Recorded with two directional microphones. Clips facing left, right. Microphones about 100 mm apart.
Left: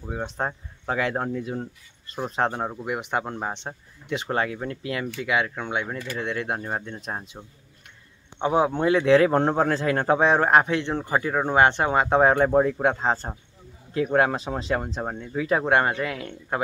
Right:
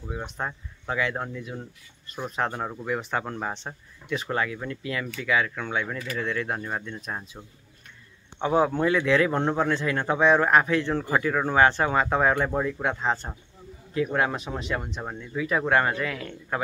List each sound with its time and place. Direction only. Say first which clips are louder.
0.1 s speech: left 4 dB; 35° left (ahead or behind)
2.7 s speech: left 1 dB; 15° left (ahead or behind); by 15.4 s 40° left (ahead or behind)
15.4 s speech: left 2 dB; 30° left (ahead or behind)